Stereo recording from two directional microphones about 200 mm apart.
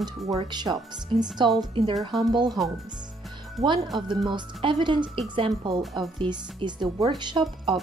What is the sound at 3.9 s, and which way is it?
Speech, 20° right (ahead or behind).